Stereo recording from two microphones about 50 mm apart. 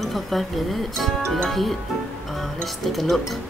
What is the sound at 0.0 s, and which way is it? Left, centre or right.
Speech, centre.